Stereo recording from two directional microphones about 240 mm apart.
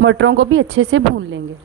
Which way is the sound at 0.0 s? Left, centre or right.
Right.